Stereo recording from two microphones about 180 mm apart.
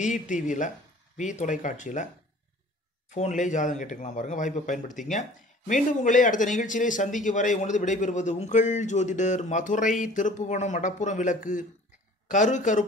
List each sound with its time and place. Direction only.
0.0 s speech: 45° left (ahead or behind)
3.2 s speech: 45° left (ahead or behind)